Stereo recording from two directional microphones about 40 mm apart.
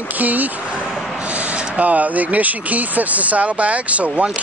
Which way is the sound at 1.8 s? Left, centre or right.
Right.